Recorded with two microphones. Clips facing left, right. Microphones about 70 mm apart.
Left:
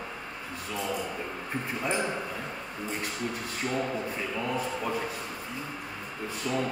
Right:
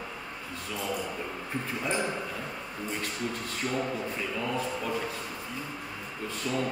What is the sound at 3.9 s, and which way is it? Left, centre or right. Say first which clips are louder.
A man's voice: left 1 dB; centre.